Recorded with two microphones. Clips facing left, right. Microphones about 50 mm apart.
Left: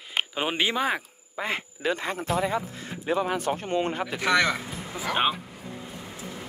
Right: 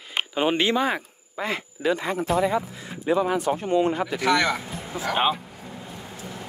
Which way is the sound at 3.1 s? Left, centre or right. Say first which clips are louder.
Right 4 dB; right.